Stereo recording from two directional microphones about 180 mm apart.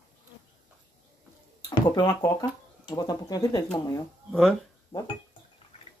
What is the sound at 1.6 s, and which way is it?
Speech, 25° left (ahead or behind).